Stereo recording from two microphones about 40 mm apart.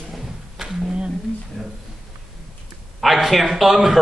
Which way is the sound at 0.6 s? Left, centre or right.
Centre.